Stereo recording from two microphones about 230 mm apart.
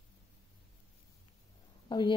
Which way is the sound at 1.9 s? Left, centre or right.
Centre.